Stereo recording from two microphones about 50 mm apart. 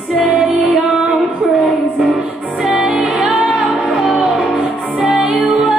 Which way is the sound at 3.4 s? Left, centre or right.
Centre.